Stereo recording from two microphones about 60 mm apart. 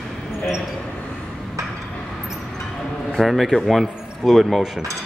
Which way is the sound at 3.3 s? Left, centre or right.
Centre.